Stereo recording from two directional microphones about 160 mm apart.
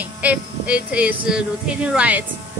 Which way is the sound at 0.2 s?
10° right (ahead or behind).